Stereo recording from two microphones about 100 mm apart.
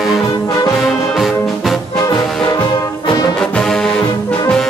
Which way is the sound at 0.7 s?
Centre (ahead or behind).